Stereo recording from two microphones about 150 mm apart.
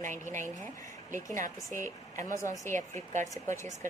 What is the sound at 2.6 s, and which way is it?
Speech, 55° right (ahead or behind).